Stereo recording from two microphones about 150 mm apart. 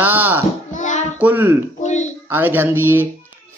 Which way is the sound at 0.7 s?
55° left (ahead or behind).